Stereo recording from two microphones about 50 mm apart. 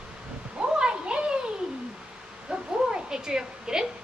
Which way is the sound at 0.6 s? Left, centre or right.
Centre.